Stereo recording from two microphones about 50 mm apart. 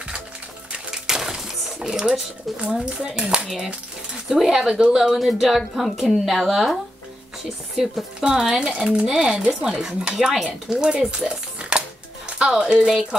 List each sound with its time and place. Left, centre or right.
0.9 s a sound: centre
2.5 s a woman's voice: centre
3.4 s a woman's voice: centre
8.2 s a woman's voice: centre